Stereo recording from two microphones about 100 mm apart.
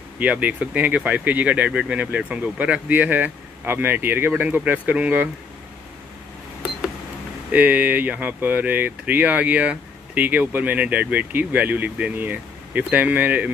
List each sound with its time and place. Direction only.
0.2 s speech: 15° right (ahead or behind)
7.5 s speech: 15° right (ahead or behind)